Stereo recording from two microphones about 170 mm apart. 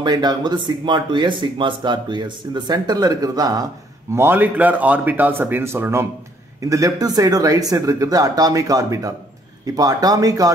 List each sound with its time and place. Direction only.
0.0 s speech: 25° right (ahead or behind)